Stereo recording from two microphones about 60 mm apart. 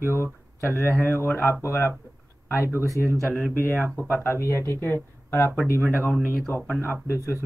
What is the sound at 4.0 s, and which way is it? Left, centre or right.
Speech, right.